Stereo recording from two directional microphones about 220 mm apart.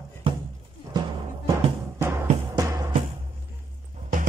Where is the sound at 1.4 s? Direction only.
15° right (ahead or behind).